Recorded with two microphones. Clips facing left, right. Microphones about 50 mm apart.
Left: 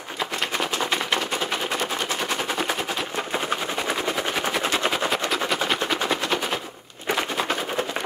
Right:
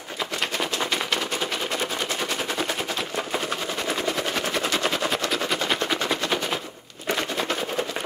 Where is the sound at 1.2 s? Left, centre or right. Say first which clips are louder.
Left 1 dB; centre.